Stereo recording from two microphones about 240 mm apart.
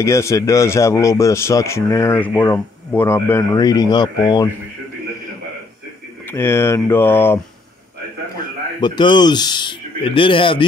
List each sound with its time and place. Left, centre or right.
0.0 s speech: centre
6.2 s speech: centre
8.8 s speech: centre